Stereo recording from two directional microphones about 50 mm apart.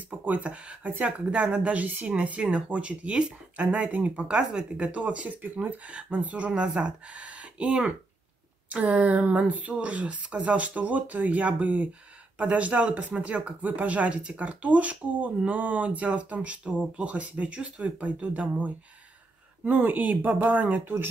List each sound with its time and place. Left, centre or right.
0.2 s speech: right
3.5 s speech: right